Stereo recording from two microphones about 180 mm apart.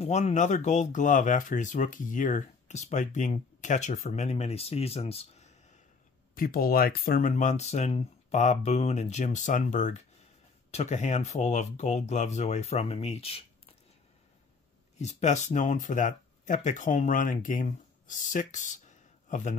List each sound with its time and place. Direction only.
0.0 s speech: 40° left (ahead or behind)
6.3 s speech: 55° left (ahead or behind); by 13.4 s 35° left (ahead or behind)
15.0 s speech: 40° left (ahead or behind)